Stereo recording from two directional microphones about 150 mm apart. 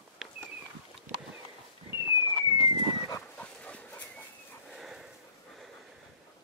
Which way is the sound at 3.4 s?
10° left (ahead or behind).